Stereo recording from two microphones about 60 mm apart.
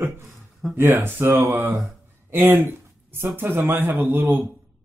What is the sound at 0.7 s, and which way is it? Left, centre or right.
Speech, right.